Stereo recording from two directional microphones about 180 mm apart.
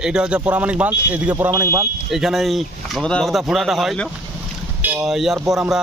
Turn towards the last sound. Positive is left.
turn(degrees=0)  # may be behind; listen again after turning